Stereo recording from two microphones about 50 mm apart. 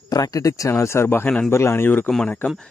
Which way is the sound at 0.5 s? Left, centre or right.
Left.